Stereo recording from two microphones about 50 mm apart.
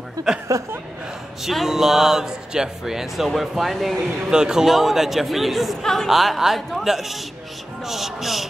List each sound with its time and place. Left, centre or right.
0.5 s speech: right
1.4 s a man's voice: centre
4.3 s a man's voice: centre
5.8 s speech: centre
6.0 s a man's voice: centre